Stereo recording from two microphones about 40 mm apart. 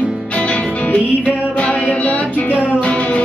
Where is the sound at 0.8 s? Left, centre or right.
Left.